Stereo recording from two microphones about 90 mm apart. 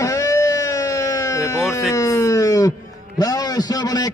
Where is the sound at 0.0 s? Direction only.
35° left (ahead or behind).